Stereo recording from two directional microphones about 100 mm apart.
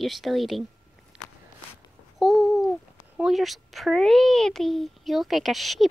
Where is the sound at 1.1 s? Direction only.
10° right (ahead or behind).